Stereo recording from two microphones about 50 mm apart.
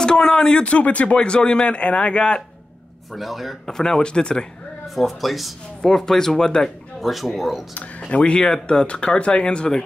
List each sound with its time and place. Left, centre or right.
0.0 s a sound: centre
0.5 s speech: left
1.1 s speech: centre
3.1 s speech: centre
3.6 s speech: centre
4.8 s speech: centre
5.8 s speech: centre
7.0 s speech: centre
8.1 s speech: left